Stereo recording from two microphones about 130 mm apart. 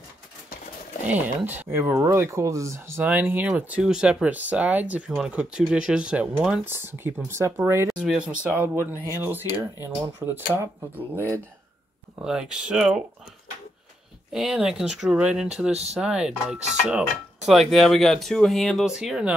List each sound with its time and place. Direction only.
1.0 s speech: 15° right (ahead or behind)
12.2 s speech: 5° right (ahead or behind)
14.3 s speech: 5° right (ahead or behind)